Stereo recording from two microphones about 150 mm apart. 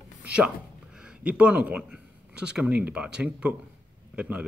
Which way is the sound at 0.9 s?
5° right (ahead or behind).